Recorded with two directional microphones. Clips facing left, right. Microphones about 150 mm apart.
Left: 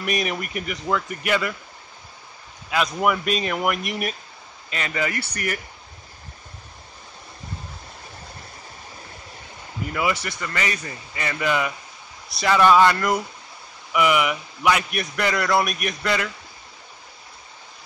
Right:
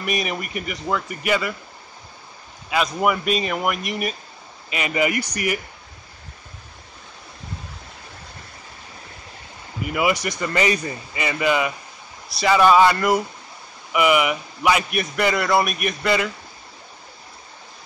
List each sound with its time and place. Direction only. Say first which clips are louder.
0.0 s a man's voice: even; centre (ahead or behind)
2.7 s a man's voice: right 1 dB; 5° right (ahead or behind)
4.6 s speech: right 5 dB; 10° right (ahead or behind)
9.9 s speech: right 4 dB; 15° right (ahead or behind)
11.1 s a man's voice: right 3 dB; 5° right (ahead or behind)